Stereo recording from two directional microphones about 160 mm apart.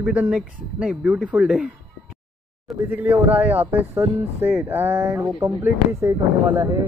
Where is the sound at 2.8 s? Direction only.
10° right (ahead or behind).